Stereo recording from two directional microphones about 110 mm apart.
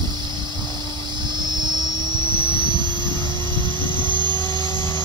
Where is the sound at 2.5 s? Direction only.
45° right (ahead or behind).